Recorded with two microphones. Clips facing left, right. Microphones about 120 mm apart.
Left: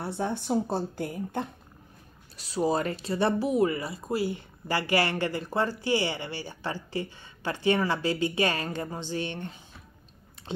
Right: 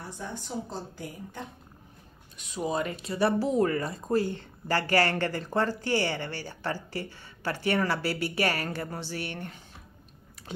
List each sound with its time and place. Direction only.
0.0 s speech: 65° left (ahead or behind)
2.3 s speech: 35° left (ahead or behind)